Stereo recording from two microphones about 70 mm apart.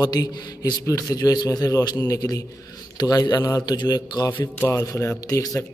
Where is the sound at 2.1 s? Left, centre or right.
Left.